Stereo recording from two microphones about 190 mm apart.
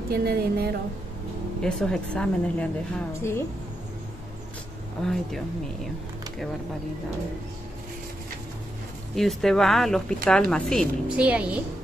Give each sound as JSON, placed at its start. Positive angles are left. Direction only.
{"t": 0.1, "sound": "speech", "side_deg": -55}
{"t": 1.6, "sound": "a woman's voice", "side_deg": 5}
{"t": 9.1, "sound": "a woman's voice", "side_deg": 0}